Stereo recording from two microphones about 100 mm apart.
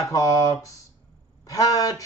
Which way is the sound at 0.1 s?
35° left (ahead or behind).